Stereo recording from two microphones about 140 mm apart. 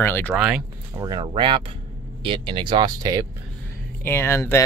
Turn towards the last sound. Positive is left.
turn(degrees=20)  # may be behind; listen again after turning